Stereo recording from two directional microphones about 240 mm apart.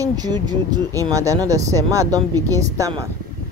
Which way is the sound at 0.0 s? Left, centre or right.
Centre.